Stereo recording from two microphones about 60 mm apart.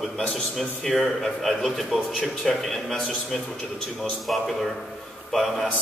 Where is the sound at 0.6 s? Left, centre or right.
Centre.